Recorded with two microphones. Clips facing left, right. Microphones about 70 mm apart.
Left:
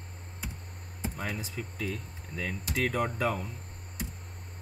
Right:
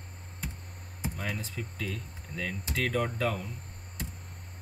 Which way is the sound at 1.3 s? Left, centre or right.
Centre.